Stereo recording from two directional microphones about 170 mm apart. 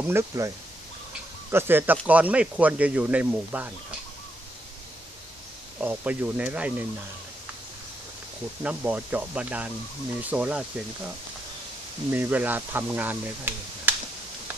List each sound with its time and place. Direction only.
0.0 s speech: 15° right (ahead or behind)
1.5 s speech: 15° right (ahead or behind)
5.8 s speech: 10° right (ahead or behind)
8.6 s speech: 10° right (ahead or behind)
12.1 s speech: 10° right (ahead or behind)